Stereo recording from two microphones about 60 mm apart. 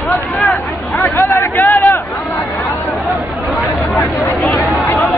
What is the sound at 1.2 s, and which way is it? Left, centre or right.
Hubbub, left.